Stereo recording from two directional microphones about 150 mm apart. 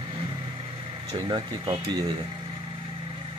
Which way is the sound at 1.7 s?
25° right (ahead or behind).